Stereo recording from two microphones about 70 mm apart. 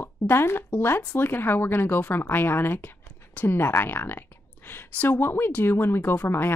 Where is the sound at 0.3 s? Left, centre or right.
Left.